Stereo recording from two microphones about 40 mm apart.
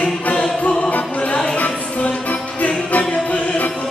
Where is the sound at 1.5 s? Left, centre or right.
Left.